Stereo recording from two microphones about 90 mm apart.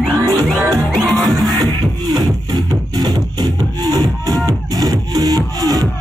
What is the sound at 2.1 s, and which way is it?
Music, 50° right (ahead or behind).